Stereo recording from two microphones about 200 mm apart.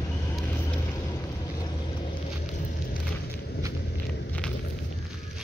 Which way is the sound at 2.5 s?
45° left (ahead or behind).